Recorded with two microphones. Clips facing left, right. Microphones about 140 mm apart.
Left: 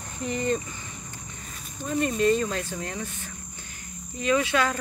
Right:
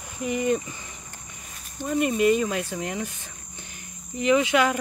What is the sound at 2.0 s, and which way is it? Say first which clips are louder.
Speech: right 2 dB; 15° right (ahead or behind).